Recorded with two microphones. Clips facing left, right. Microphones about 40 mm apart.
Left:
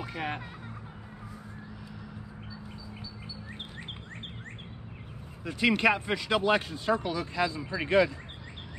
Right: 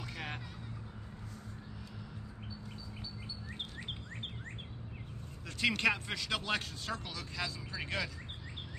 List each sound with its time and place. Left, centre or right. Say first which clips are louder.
0.0 s music: left 8 dB; centre
5.4 s speech: left 6 dB; centre